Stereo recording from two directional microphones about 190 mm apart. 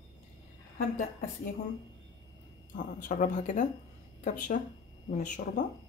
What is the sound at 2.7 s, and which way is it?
Speech, 40° left (ahead or behind).